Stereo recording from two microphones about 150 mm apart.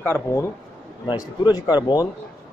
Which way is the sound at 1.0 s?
30° left (ahead or behind).